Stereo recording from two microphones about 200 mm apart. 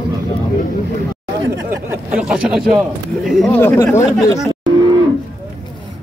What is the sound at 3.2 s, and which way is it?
Speech, centre (ahead or behind).